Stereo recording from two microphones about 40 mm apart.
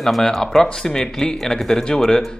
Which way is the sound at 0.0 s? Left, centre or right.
Centre.